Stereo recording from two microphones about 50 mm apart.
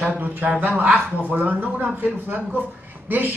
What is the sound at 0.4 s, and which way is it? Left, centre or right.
A man's voice, right.